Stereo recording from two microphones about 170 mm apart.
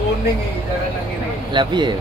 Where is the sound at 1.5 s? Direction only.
25° right (ahead or behind).